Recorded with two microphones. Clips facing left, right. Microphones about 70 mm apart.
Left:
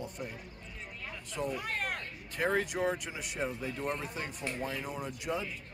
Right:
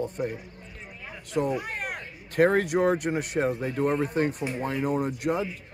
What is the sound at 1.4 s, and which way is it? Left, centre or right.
Speech, centre.